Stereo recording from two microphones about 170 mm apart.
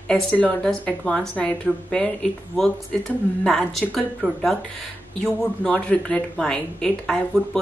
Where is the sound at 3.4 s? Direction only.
5° left (ahead or behind).